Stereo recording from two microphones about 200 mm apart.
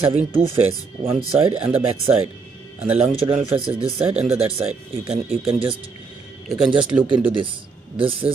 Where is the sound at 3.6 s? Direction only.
30° right (ahead or behind).